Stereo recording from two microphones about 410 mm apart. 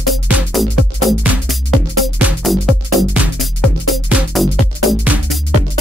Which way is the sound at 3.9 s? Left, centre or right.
Centre.